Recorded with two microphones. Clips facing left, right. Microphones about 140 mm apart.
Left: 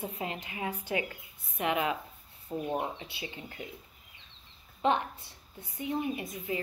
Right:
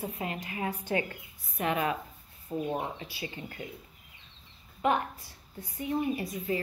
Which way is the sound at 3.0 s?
20° left (ahead or behind).